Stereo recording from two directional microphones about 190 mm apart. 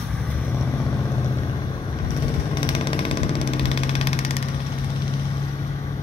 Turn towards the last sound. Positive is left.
turn(degrees=30)  # may be behind; listen again after turning